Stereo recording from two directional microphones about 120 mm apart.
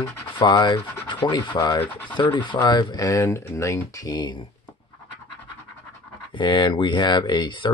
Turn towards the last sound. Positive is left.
turn(degrees=40)  # may be behind; listen again after turning